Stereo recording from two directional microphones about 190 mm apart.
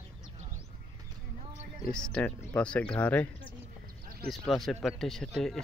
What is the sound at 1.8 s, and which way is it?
Speech, 5° left (ahead or behind).